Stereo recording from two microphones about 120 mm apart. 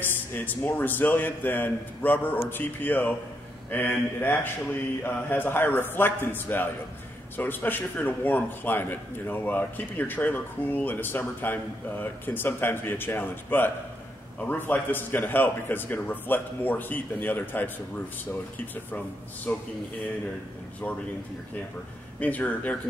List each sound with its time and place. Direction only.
0.0 s a man's voice: 15° left (ahead or behind)
18.9 s a man's voice: 15° left (ahead or behind)
22.2 s a man's voice: 10° left (ahead or behind)